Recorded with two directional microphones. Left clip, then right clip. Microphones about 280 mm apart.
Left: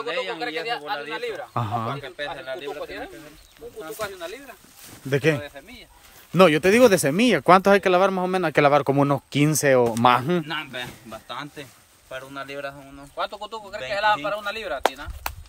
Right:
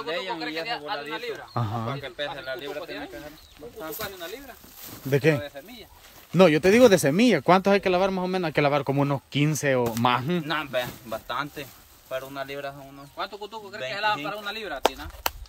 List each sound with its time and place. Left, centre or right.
0.1 s speech: centre
0.4 s speech: centre
4.0 s speech: centre
10.4 s speech: centre
13.2 s speech: centre
15.2 s a sound: right